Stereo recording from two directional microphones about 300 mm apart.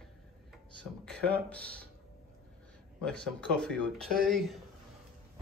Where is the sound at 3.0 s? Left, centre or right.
Centre.